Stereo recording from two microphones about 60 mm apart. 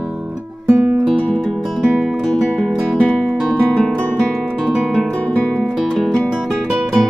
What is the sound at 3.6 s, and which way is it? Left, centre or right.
Guitar, centre.